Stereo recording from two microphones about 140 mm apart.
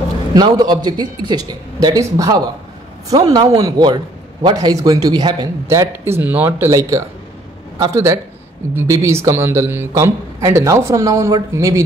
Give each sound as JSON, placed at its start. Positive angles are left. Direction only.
{"t": 0.6, "sound": "a man's voice", "side_deg": -30}